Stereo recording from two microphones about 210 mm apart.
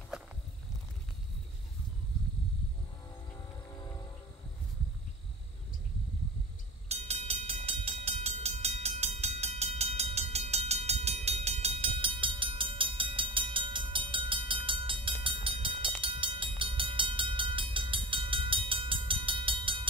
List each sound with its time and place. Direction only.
6.9 s music: 30° right (ahead or behind)
16.0 s train: 25° right (ahead or behind)